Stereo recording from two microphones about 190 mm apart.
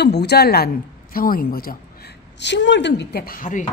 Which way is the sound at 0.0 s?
60° left (ahead or behind).